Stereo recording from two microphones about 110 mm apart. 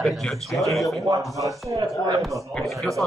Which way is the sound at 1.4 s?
30° right (ahead or behind).